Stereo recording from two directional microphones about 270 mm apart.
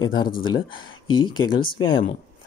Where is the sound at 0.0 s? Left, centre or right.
Centre.